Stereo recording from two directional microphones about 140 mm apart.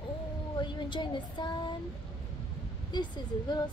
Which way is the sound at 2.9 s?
30° left (ahead or behind).